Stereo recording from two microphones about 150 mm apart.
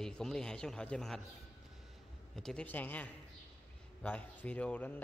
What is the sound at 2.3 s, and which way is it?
A man's voice, 5° left (ahead or behind).